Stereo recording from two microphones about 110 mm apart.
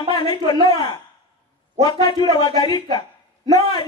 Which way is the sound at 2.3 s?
45° left (ahead or behind).